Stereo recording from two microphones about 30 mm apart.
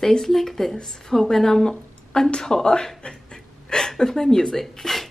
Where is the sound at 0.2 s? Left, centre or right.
Centre; by 2.9 s left.